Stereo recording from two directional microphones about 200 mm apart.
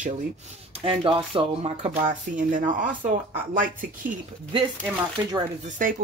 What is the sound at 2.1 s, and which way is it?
Speech, 40° right (ahead or behind).